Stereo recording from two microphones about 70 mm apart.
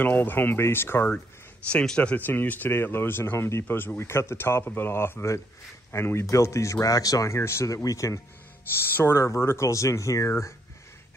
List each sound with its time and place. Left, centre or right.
0.0 s speech: left
1.7 s speech: centre
2.1 s speech: left
7.3 s speech: left
8.7 s speech: left